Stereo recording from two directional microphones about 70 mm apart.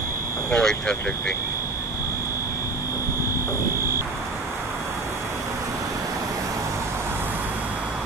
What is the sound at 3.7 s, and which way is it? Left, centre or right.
Vehicle, right.